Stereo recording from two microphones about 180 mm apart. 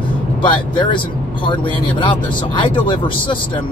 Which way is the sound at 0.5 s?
25° left (ahead or behind).